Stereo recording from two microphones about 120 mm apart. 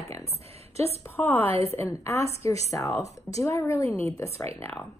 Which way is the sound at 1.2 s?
15° left (ahead or behind).